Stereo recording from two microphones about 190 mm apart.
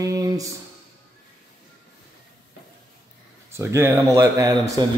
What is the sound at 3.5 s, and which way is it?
Speech, 15° right (ahead or behind).